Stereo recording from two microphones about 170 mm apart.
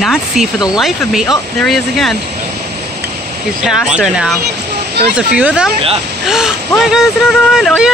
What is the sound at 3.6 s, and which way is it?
Speech, 5° right (ahead or behind).